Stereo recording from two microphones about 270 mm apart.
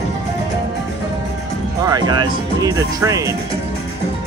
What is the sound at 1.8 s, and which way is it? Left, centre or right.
Speech, centre.